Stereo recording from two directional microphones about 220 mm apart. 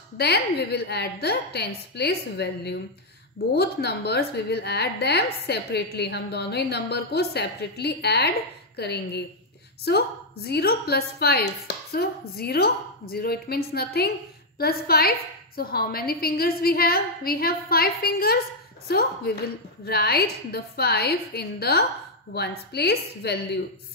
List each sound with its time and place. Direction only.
0.2 s a woman's voice: 45° left (ahead or behind)